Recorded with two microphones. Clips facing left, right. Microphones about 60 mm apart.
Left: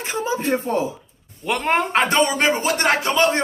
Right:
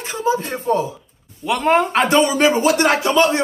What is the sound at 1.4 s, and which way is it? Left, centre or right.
Speech, centre.